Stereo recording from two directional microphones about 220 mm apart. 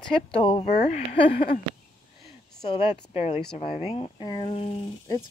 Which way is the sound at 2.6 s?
25° left (ahead or behind).